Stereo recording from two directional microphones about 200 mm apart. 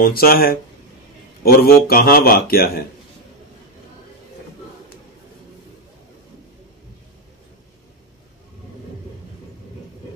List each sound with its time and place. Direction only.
0.0 s a man's voice: 45° left (ahead or behind)